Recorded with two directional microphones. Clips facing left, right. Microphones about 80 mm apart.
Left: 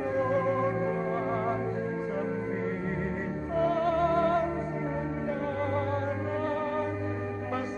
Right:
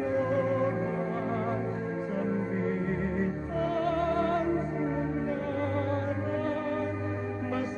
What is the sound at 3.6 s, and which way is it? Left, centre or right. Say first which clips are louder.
Music: left 3 dB; left.